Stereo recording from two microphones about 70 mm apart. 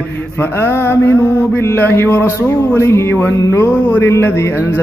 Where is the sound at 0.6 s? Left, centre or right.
Left.